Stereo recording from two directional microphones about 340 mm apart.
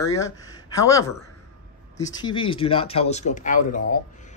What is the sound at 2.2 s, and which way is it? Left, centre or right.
Speech, centre.